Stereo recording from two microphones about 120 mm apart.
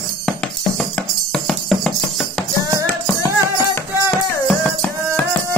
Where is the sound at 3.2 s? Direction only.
20° left (ahead or behind).